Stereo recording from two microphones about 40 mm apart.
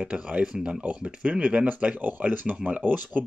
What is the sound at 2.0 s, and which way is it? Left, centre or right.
Speech, right.